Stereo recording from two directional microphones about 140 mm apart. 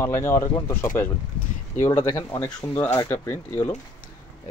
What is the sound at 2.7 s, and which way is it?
Speech, 20° left (ahead or behind).